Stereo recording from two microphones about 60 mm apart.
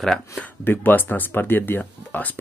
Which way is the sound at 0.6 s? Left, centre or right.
Left.